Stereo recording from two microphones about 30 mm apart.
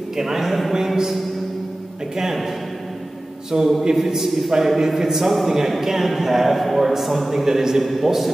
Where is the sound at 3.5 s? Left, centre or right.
Right.